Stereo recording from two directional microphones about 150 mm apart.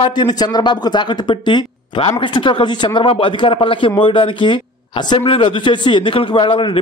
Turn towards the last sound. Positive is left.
turn(degrees=35)  # may be behind; listen again after turning